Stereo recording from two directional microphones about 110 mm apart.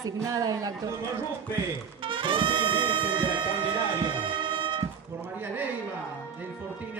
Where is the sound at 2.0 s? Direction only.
50° right (ahead or behind).